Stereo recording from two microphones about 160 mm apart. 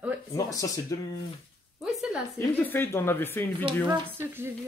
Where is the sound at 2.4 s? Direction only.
10° left (ahead or behind).